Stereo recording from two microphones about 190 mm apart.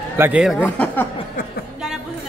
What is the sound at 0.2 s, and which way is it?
Speech, 5° right (ahead or behind).